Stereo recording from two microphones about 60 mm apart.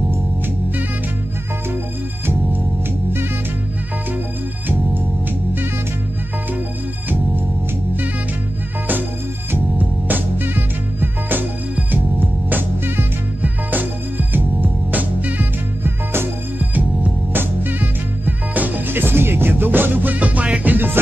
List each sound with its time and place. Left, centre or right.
9.5 s music: right
16.5 s music: right
20.7 s music: right